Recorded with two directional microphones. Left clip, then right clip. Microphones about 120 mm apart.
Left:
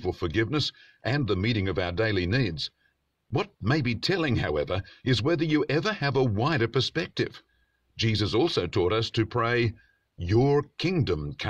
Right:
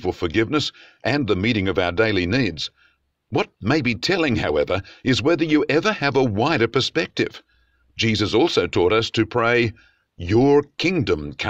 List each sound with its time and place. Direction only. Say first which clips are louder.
0.0 s speech: right 6 dB; 40° right (ahead or behind)